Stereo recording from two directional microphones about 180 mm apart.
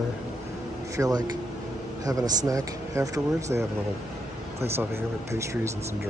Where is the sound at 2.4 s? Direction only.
20° right (ahead or behind).